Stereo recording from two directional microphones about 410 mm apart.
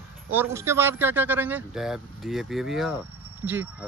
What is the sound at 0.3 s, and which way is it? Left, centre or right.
Speech, centre.